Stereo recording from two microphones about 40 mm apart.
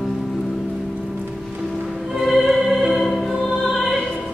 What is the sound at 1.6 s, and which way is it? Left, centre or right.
Music, centre.